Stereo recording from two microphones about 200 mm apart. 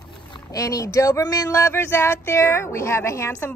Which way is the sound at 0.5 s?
15° left (ahead or behind).